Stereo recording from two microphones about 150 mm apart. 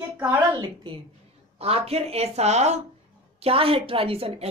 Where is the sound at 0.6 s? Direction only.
30° right (ahead or behind).